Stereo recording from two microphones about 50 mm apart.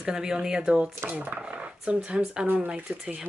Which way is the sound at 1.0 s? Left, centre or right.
Right.